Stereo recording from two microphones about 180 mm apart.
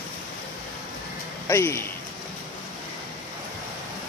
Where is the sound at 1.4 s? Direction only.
15° left (ahead or behind).